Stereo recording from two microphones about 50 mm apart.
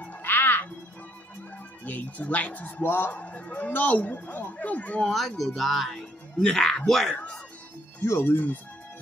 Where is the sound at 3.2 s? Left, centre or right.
Left.